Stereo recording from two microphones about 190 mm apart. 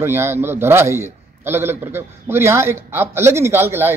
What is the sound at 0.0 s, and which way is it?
A man's voice, 10° right (ahead or behind).